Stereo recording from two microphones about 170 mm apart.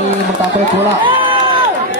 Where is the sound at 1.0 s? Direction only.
30° right (ahead or behind).